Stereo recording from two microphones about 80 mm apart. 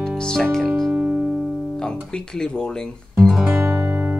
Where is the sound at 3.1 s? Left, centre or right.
Centre.